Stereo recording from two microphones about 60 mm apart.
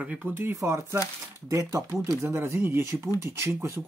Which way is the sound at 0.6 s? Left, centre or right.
Right.